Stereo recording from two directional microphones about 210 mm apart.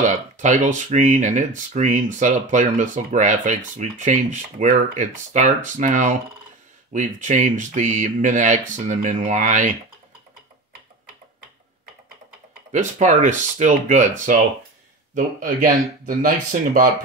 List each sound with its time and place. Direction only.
0.0 s speech: 35° right (ahead or behind)
12.7 s speech: 35° right (ahead or behind)